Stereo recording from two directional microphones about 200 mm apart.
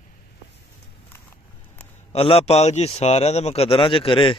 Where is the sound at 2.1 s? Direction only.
30° left (ahead or behind).